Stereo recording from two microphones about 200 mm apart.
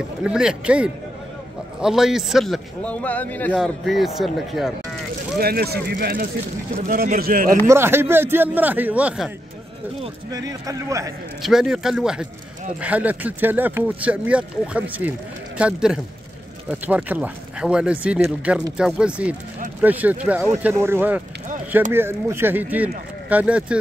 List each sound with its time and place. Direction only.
0.2 s a man's voice: 5° right (ahead or behind)
5.4 s speech: 50° right (ahead or behind)
7.6 s speech: 10° right (ahead or behind)
10.3 s speech: 15° right (ahead or behind)
11.4 s a man's voice: 5° right (ahead or behind)